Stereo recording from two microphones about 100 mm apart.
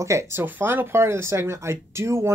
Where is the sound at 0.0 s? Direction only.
30° right (ahead or behind).